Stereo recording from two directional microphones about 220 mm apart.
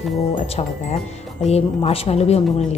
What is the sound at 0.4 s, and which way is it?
Speech, 30° left (ahead or behind).